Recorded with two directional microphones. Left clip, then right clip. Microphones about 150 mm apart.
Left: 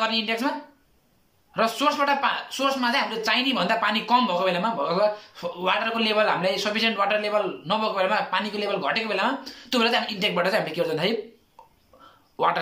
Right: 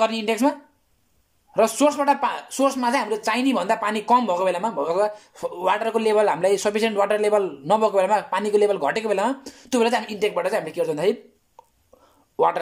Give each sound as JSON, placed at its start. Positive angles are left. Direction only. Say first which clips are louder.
{"t": 0.0, "sound": "speech", "louder": "right 4 dB", "side_deg": -35}